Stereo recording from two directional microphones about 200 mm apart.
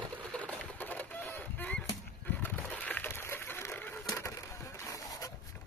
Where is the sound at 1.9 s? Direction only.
10° left (ahead or behind).